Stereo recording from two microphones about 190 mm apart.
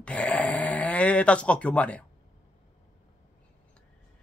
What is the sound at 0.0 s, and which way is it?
Snoring, 5° left (ahead or behind).